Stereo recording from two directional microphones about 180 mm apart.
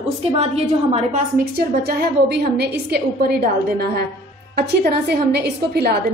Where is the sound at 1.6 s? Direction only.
65° right (ahead or behind).